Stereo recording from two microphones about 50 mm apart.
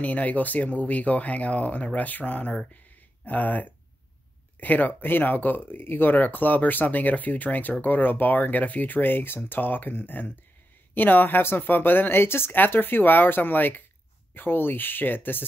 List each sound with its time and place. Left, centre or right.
0.0 s speech: left